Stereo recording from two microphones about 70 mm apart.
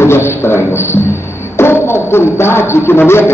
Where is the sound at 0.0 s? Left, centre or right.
Left.